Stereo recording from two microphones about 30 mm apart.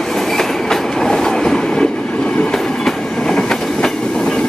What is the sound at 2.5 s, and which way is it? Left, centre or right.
Train, centre.